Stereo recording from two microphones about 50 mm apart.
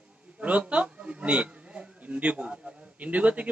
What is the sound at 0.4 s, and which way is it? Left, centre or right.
A man's voice, right.